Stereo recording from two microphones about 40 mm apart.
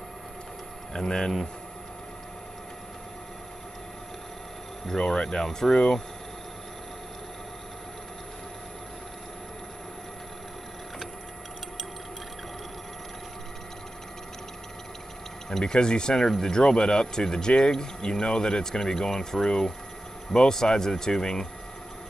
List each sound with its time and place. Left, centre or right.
0.9 s speech: centre
4.8 s speech: centre
15.5 s speech: centre